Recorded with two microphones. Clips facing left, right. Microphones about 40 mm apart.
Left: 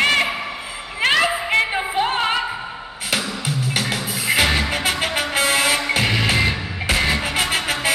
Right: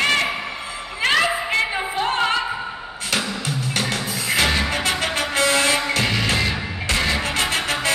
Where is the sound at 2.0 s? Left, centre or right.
Centre.